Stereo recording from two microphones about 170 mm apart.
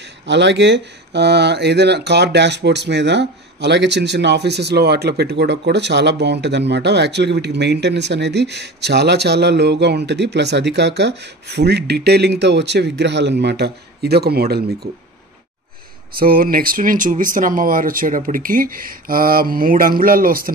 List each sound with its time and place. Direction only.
0.3 s speech: 90° right; by 14.9 s 65° right (ahead or behind)
16.2 s speech: 60° right (ahead or behind)